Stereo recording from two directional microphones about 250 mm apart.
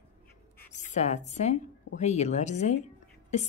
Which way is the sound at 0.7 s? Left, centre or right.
Left.